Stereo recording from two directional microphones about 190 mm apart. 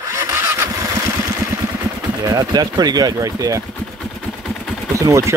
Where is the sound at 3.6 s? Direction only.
Centre (ahead or behind).